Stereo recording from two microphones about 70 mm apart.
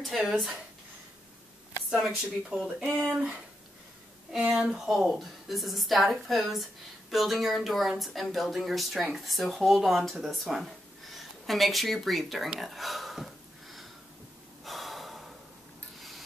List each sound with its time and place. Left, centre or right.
0.0 s a woman's voice: centre
1.9 s speech: centre
2.8 s speech: right
4.5 s a woman's voice: centre
12.5 s a sound: centre
14.6 s gasp: centre
16.0 s rub: centre